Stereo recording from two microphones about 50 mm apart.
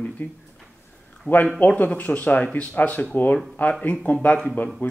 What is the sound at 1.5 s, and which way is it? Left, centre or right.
Speech, left.